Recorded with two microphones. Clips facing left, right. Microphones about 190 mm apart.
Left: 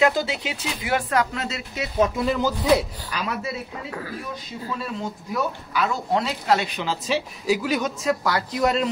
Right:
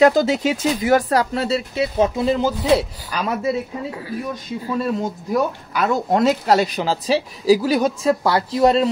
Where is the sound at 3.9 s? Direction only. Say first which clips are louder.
Right 3 dB; 20° right (ahead or behind).